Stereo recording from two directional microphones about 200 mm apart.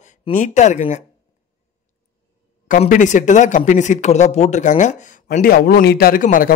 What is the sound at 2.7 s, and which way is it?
Speech, 40° left (ahead or behind).